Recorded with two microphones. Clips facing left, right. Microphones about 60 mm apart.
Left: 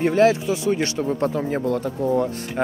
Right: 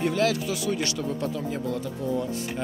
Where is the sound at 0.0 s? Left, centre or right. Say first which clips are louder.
Left 7 dB; left.